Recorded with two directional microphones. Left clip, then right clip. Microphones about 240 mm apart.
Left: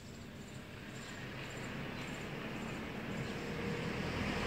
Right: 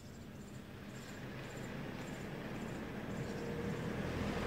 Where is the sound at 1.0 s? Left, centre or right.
Right.